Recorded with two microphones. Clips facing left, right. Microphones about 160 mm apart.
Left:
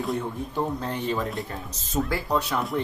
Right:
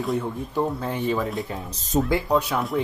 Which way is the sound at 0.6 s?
10° right (ahead or behind).